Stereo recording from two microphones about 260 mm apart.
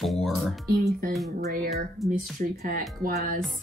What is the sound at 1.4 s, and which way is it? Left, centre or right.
Speech, right.